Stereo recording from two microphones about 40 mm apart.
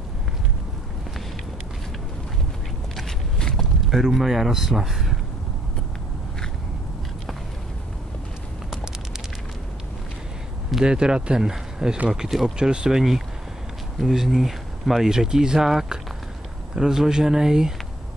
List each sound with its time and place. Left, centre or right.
3.3 s a sound: centre
4.2 s speech: centre
10.8 s speech: right
12.5 s speech: centre